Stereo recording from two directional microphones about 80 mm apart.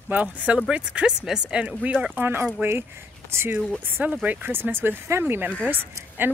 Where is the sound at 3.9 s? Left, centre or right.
Centre.